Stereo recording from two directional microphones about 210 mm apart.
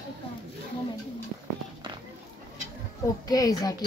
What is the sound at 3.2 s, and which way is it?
Speech, 15° left (ahead or behind).